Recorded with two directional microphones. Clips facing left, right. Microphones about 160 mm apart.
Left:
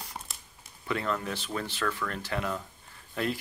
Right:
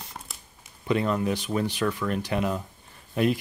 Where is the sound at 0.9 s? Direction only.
15° right (ahead or behind).